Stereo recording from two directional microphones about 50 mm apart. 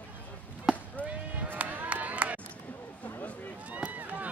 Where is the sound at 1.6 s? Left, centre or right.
Right.